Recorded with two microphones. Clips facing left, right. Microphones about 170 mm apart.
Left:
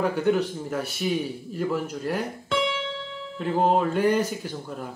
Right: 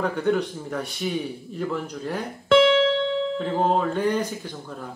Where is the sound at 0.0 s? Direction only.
5° left (ahead or behind).